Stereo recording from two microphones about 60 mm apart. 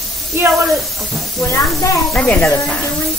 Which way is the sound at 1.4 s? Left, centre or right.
Left.